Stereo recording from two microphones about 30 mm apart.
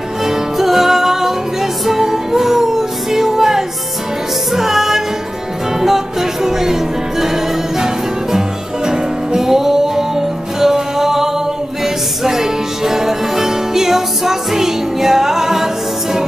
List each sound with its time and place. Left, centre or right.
0.2 s music: centre